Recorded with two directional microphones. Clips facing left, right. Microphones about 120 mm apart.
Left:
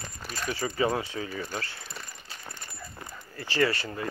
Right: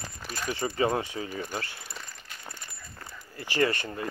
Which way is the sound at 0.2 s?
5° right (ahead or behind).